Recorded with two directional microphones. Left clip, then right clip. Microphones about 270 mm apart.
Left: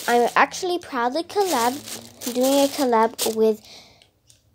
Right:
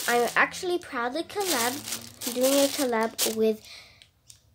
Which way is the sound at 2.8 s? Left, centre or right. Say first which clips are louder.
Left 7 dB; centre.